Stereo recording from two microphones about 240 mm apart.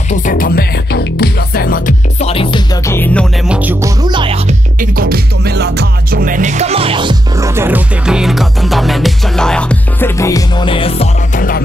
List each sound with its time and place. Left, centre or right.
0.1 s music: left
2.9 s music: centre
3.5 s music: centre
4.7 s music: right; by 11.6 s left